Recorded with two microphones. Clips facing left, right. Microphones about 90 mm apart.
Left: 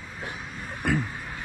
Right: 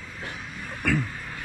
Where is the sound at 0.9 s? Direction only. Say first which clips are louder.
Even; 20° left (ahead or behind).